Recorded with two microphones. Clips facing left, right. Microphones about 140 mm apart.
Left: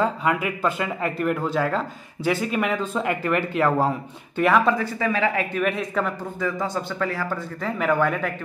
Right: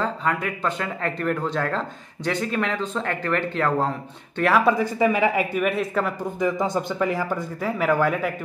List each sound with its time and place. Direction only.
0.0 s speech: 10° left (ahead or behind)
4.4 s speech: centre (ahead or behind)
4.7 s speech: 15° right (ahead or behind)
6.4 s speech: 15° right (ahead or behind)
7.8 s speech: 5° right (ahead or behind)